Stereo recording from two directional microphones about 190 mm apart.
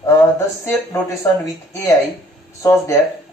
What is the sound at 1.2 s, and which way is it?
A man's voice, 15° left (ahead or behind).